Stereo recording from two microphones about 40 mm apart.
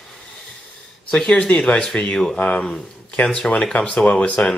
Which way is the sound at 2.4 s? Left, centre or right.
Left.